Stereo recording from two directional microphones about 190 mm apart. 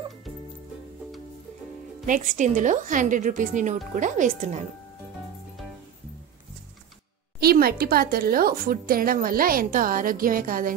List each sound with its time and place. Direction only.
2.0 s a woman's voice: 40° right (ahead or behind)
7.3 s a woman's voice: 55° right (ahead or behind)